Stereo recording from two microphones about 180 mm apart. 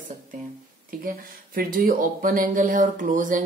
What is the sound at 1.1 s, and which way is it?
Speech, 50° right (ahead or behind).